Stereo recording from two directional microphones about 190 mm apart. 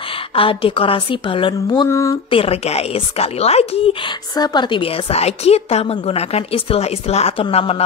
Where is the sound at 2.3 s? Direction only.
30° left (ahead or behind).